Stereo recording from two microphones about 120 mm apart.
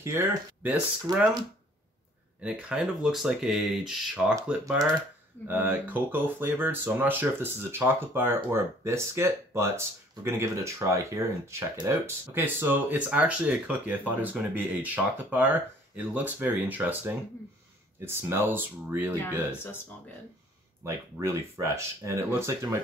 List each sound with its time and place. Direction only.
0.0 s speech: 25° right (ahead or behind)
1.1 s speech: 35° right (ahead or behind)
2.4 s speech: 5° right (ahead or behind)
5.5 s speech: 15° right (ahead or behind)
20.8 s speech: 25° right (ahead or behind)